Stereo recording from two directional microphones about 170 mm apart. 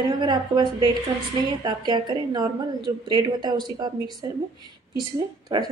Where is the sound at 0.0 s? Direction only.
25° right (ahead or behind).